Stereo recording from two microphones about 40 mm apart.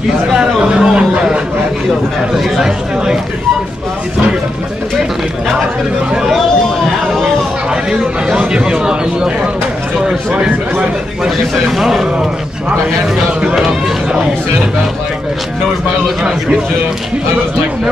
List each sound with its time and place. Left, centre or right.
0.4 s a sound: right
7.7 s chatter: centre
8.4 s speech: right
11.2 s a man's voice: centre
13.6 s speech: centre